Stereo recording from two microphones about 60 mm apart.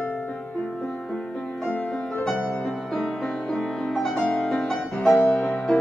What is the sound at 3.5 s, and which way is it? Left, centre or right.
Music, centre.